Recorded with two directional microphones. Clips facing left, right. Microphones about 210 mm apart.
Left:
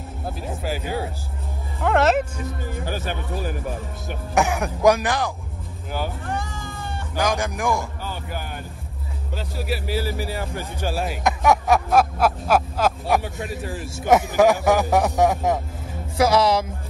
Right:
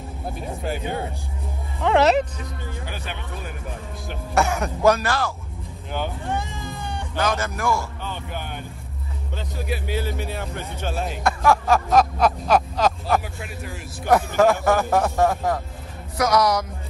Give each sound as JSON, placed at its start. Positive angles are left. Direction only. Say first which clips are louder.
{"t": 0.3, "sound": "speech", "louder": "even", "side_deg": 0}
{"t": 2.7, "sound": "speech", "louder": "left 6 dB", "side_deg": 45}
{"t": 4.4, "sound": "speech", "louder": "left 1 dB", "side_deg": 15}
{"t": 5.9, "sound": "speech", "louder": "even", "side_deg": 5}
{"t": 6.6, "sound": "cat", "louder": "right 1 dB", "side_deg": -15}
{"t": 6.9, "sound": "speech", "louder": "left 1 dB", "side_deg": 15}
{"t": 13.7, "sound": "a man's voice", "louder": "left 1 dB", "side_deg": 30}